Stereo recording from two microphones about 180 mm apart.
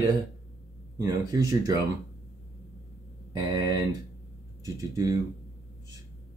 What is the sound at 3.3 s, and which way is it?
Speech, 20° right (ahead or behind).